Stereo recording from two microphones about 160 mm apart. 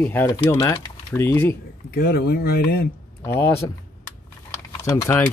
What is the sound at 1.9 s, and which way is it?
Speech, 75° left (ahead or behind).